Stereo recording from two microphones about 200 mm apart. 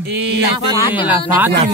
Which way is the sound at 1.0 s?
10° right (ahead or behind).